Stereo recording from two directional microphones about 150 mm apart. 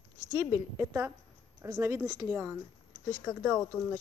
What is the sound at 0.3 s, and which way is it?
Speech, 20° right (ahead or behind).